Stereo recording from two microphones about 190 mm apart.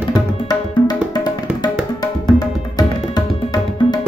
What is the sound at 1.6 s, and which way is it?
Music, 20° left (ahead or behind).